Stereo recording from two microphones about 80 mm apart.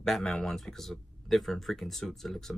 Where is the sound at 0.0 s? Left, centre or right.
Centre.